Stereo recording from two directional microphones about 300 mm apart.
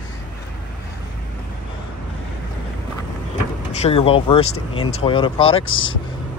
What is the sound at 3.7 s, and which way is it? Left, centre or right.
Speech, left.